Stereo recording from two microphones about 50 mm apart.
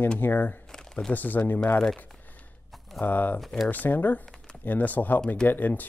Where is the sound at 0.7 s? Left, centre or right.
Centre.